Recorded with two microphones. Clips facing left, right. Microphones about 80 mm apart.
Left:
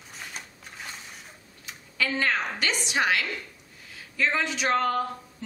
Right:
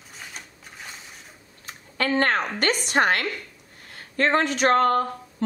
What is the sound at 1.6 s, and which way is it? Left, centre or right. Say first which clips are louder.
A woman's voice: right 3 dB; right.